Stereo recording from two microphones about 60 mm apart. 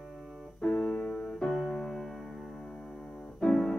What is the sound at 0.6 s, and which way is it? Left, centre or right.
Keyboard, centre.